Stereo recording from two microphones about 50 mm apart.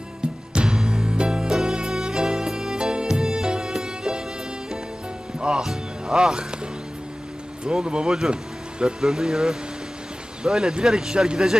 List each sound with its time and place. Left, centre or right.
0.5 s music: centre
5.6 s music: centre
7.6 s speech: centre